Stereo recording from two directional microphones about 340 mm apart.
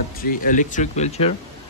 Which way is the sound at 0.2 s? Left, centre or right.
Left.